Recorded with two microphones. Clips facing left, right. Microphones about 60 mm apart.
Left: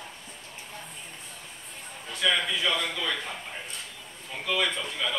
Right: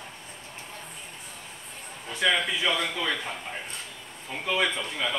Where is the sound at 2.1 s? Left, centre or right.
Centre.